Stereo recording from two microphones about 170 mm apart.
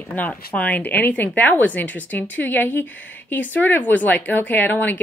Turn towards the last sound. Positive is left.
turn(degrees=10)  # may be behind; listen again after turning